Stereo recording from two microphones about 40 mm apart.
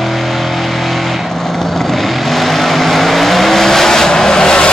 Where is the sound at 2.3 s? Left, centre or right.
Centre.